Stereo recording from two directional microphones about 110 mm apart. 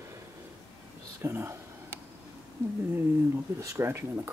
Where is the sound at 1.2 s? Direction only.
25° right (ahead or behind).